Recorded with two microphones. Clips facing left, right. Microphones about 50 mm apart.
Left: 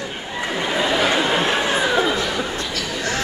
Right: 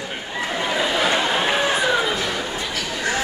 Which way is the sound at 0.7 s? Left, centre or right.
Centre.